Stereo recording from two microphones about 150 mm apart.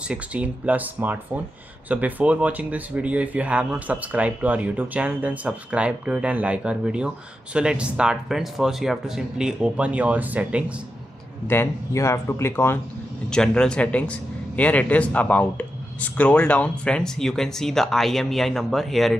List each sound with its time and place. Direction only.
0.1 s speech: 10° right (ahead or behind)
11.4 s speech: 15° left (ahead or behind)
13.3 s speech: 5° left (ahead or behind)